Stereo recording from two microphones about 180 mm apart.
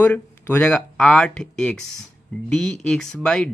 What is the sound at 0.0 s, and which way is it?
Speech, 10° left (ahead or behind).